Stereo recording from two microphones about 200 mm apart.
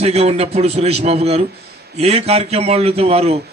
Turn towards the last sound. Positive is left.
turn(degrees=-30)  # may be behind; listen again after turning